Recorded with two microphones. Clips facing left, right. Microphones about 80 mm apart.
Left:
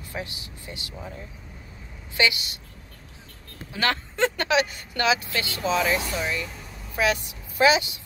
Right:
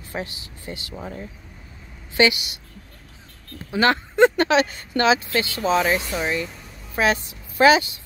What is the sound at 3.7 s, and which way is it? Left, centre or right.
Speech, right.